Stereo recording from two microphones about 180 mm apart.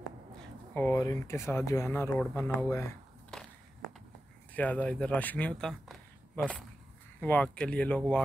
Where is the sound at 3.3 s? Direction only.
5° left (ahead or behind).